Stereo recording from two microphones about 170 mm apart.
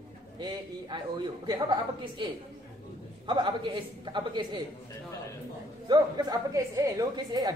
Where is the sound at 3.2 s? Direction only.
25° right (ahead or behind).